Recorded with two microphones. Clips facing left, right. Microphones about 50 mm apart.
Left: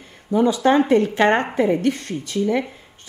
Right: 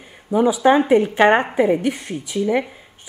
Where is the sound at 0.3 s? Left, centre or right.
Centre.